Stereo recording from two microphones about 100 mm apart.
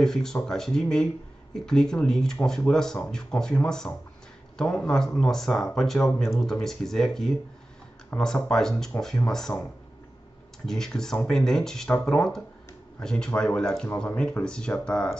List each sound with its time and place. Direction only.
0.0 s speech: 5° left (ahead or behind)
8.1 s speech: 20° left (ahead or behind)
8.5 s speech: 5° left (ahead or behind)
10.7 s speech: 5° left (ahead or behind)